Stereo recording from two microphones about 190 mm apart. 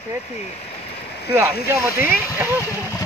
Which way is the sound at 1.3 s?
15° right (ahead or behind).